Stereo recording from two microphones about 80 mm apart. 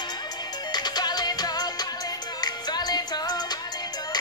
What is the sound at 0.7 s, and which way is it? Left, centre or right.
Music, left.